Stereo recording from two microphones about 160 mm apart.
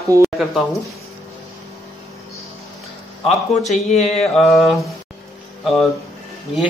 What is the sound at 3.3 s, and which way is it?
Speech, centre (ahead or behind).